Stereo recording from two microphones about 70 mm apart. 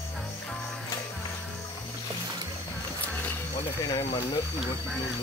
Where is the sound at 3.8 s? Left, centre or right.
Left.